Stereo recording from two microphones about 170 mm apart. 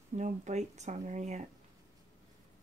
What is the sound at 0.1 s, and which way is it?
Speech, 45° right (ahead or behind).